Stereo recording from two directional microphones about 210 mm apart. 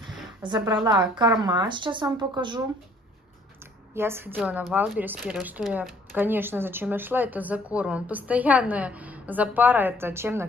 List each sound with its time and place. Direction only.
0.6 s speech: 20° right (ahead or behind)
3.9 s speech: 10° right (ahead or behind)